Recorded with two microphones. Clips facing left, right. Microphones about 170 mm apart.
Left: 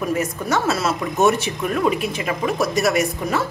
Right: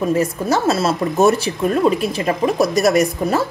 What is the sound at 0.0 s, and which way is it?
A woman's voice, 30° right (ahead or behind).